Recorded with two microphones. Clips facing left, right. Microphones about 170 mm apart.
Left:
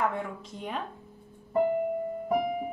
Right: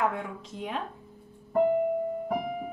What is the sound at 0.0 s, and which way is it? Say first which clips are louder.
Speech: even; centre (ahead or behind).